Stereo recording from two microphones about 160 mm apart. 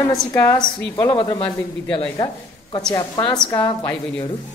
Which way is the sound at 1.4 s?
10° left (ahead or behind).